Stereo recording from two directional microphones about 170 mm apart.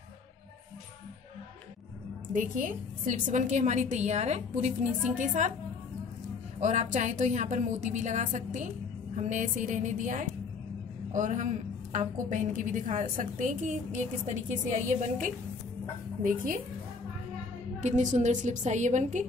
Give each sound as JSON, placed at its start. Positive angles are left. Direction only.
{"t": 2.3, "sound": "a woman's voice", "side_deg": -50}
{"t": 6.6, "sound": "a woman's voice", "side_deg": -45}
{"t": 17.7, "sound": "a woman's voice", "side_deg": -45}